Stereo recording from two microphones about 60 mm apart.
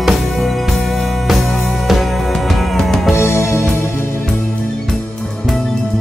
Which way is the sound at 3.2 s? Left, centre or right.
Left.